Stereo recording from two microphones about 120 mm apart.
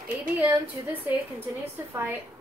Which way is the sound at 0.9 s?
15° right (ahead or behind).